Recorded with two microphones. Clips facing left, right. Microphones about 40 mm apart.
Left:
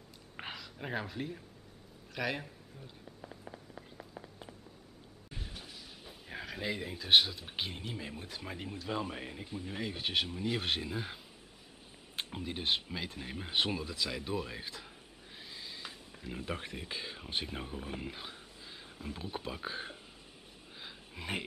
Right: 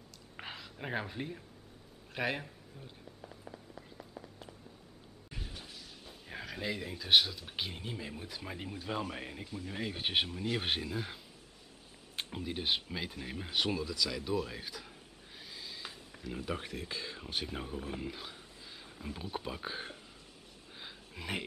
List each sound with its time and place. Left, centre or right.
0.6 s a man's voice: centre
3.1 s a sound: centre
7.8 s speech: centre
9.4 s speech: centre
9.7 s speech: centre
12.2 s speech: centre
13.5 s speech: centre
15.3 s a sound: centre
16.3 s speech: centre
20.7 s a sound: centre